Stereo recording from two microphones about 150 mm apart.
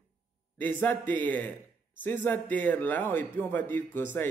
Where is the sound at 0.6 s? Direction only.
10° left (ahead or behind).